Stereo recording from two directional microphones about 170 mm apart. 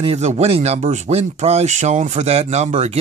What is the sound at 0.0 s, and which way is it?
Speech, 40° right (ahead or behind).